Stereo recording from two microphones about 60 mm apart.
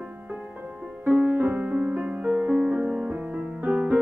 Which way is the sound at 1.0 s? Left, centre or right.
Centre.